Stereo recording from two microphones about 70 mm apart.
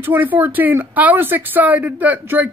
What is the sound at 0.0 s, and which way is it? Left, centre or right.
Speech, right.